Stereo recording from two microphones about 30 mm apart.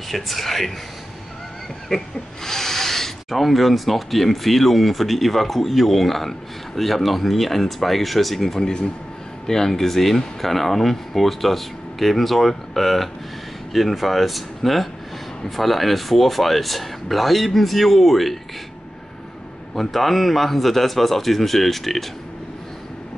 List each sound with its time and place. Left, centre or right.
0.1 s speech: centre
1.9 s speech: centre
2.4 s snake: centre
3.3 s speech: centre
8.5 s speech: left; by 18.4 s centre
19.7 s speech: centre